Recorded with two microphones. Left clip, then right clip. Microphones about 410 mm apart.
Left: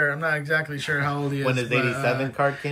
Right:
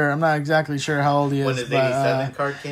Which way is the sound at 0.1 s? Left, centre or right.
Centre.